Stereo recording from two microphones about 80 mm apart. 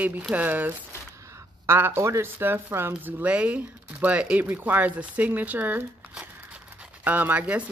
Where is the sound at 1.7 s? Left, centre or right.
Right.